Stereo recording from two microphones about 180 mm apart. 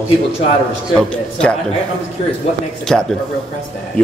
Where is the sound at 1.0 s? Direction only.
5° left (ahead or behind).